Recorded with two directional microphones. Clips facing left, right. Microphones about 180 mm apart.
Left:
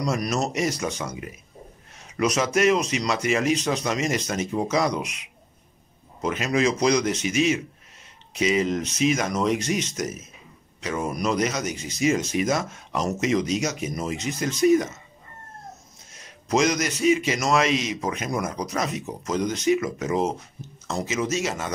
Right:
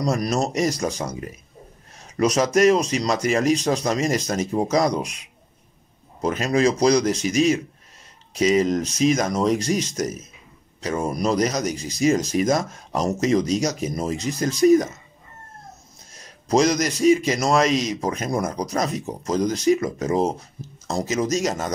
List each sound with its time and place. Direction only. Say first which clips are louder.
0.0 s a man's voice: right 3 dB; 35° right (ahead or behind)
16.1 s a man's voice: right 3 dB; 35° right (ahead or behind)